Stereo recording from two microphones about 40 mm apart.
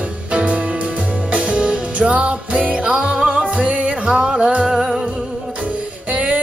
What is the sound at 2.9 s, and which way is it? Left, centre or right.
Music, centre.